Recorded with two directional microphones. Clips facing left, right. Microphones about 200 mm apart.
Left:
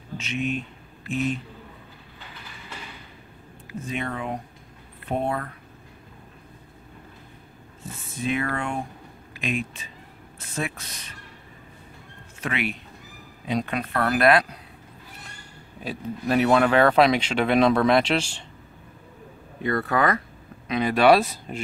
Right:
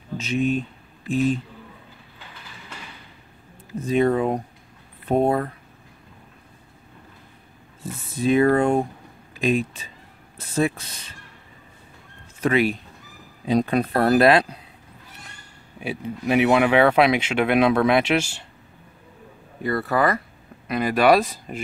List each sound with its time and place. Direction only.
0.2 s speech: 35° right (ahead or behind)
3.8 s speech: 35° right (ahead or behind)
7.8 s speech: 35° right (ahead or behind)
12.4 s speech: 40° right (ahead or behind)
15.8 s speech: 10° right (ahead or behind)
19.6 s speech: 5° right (ahead or behind)